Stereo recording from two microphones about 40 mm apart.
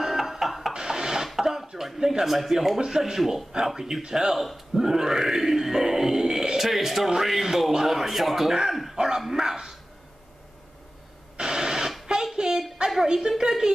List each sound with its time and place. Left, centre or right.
0.0 s music: centre
0.7 s a sound: centre
2.0 s speech: centre
2.8 s speech: centre
4.7 s grunt: centre
6.7 s speech: centre
8.9 s dog: centre
9.2 s speech: centre
11.3 s radio: centre
12.1 s a sound: centre
12.9 s a woman's voice: centre